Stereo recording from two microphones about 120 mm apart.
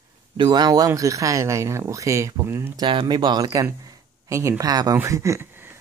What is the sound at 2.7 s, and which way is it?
Speech, 40° right (ahead or behind).